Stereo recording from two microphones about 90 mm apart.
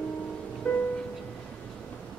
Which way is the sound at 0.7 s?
15° left (ahead or behind).